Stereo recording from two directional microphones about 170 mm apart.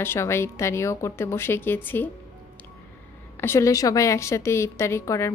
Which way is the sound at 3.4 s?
15° left (ahead or behind).